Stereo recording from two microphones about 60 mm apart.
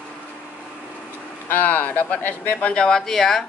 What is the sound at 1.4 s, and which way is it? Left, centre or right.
Speech, left.